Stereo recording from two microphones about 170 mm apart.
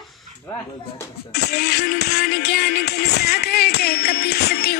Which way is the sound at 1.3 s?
70° left (ahead or behind).